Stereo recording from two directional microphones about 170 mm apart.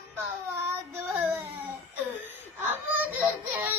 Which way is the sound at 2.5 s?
10° right (ahead or behind).